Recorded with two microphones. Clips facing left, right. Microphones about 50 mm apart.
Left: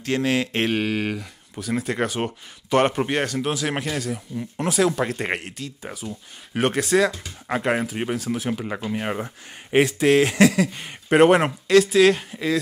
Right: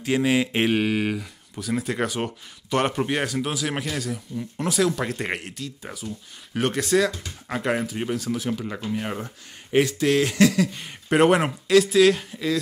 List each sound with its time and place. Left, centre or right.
0.0 s speech: centre
1.5 s speech: centre
3.1 s speech: centre
4.6 s speech: centre
5.0 s speech: centre
5.9 s speech: centre
7.4 s speech: centre